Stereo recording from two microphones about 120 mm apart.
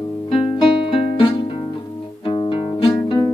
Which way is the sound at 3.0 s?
40° left (ahead or behind).